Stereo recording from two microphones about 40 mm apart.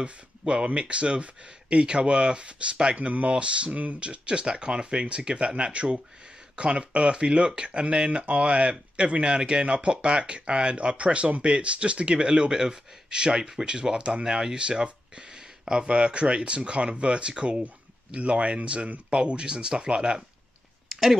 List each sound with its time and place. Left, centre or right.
0.0 s speech: right
20.9 s speech: centre